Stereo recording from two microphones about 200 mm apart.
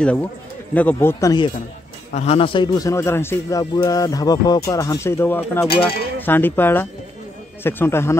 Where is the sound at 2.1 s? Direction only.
30° left (ahead or behind).